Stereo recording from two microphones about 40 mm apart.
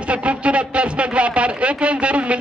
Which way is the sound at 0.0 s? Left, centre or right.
Right.